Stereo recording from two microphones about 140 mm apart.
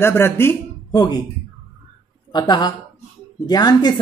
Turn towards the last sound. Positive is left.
turn(degrees=30)  # may be behind; listen again after turning